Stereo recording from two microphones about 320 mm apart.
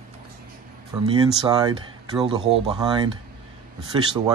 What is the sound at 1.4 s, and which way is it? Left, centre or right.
Speech, centre.